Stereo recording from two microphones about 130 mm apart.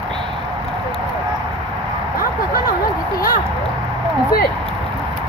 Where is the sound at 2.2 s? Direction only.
90° left.